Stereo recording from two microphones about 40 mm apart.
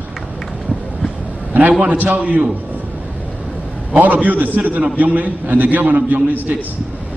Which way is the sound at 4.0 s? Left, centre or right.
Right.